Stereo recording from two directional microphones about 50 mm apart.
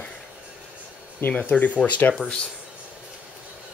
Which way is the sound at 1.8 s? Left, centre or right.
Left.